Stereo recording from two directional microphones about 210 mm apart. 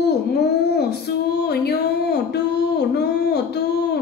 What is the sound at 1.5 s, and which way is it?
Speech, 50° left (ahead or behind).